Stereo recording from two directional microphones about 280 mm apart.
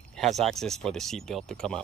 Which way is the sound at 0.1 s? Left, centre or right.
Centre.